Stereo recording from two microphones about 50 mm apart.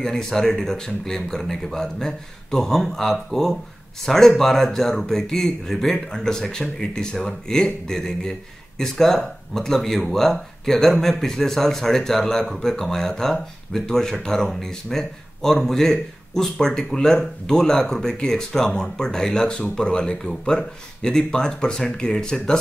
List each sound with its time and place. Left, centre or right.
0.0 s speech: centre